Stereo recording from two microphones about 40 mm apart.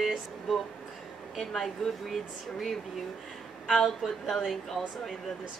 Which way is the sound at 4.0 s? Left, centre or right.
Centre.